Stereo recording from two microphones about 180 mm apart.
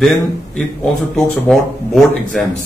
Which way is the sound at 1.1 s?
Centre (ahead or behind).